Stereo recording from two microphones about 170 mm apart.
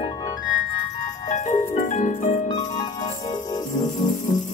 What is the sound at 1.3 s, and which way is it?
Music, 50° left (ahead or behind).